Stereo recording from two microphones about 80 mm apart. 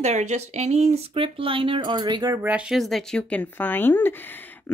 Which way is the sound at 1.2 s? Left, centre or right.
Right.